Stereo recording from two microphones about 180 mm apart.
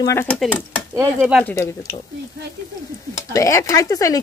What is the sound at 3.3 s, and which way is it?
Speech, 15° left (ahead or behind).